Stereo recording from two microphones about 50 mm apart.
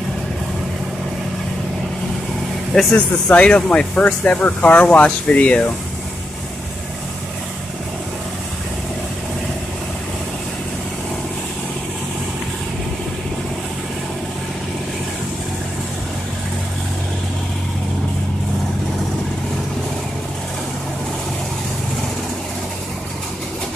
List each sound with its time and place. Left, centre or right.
2.9 s speech: left